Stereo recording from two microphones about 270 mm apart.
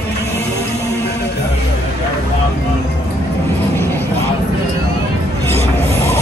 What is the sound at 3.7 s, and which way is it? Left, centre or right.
Vehicle, centre.